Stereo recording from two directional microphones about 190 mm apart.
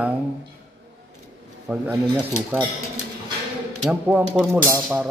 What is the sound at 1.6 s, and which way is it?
Speech, 10° right (ahead or behind).